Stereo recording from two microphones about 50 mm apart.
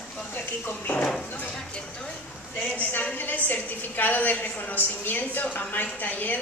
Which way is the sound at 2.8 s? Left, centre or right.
Left.